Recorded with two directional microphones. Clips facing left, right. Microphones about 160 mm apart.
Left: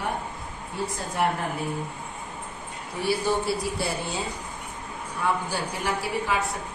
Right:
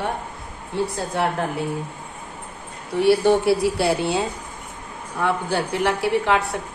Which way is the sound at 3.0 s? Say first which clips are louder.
Right 9 dB; 70° right (ahead or behind).